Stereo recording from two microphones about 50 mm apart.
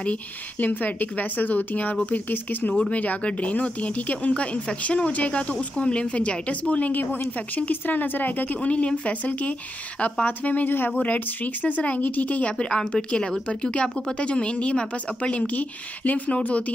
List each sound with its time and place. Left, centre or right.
0.0 s speech: left
6.9 s speech: left